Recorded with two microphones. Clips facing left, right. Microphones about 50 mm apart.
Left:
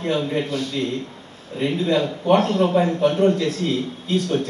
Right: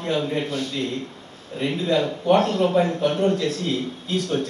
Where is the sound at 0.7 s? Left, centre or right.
Left.